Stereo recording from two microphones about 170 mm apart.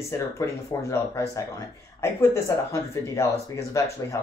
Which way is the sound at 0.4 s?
20° left (ahead or behind).